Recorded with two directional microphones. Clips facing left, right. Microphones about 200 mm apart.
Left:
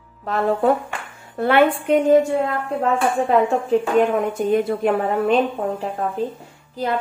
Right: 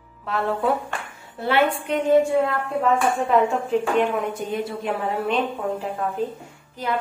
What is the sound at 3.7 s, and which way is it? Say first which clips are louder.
A woman's voice: left 4 dB; 45° left (ahead or behind).